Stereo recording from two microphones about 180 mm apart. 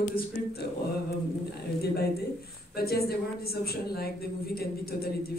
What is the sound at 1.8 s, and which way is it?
A woman's voice, 60° left (ahead or behind).